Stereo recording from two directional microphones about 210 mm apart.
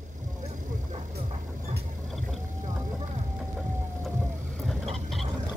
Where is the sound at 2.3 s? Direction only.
35° right (ahead or behind).